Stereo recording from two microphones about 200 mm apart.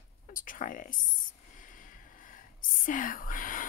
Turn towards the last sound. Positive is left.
turn(degrees=40)  # may be behind; listen again after turning